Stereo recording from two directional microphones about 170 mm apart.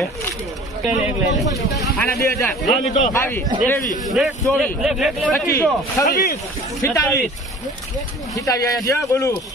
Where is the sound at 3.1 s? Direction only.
15° left (ahead or behind).